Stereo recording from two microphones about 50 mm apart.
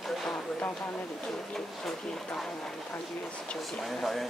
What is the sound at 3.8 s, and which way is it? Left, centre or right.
Speech, centre.